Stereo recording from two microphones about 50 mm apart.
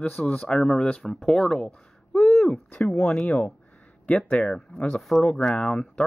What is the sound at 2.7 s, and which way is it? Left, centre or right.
Speech, left.